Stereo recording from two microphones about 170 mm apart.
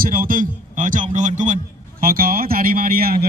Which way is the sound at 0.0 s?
55° right (ahead or behind).